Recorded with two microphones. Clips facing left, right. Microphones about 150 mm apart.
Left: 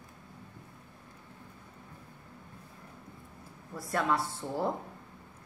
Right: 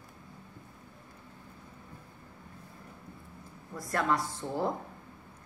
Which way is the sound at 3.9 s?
5° left (ahead or behind).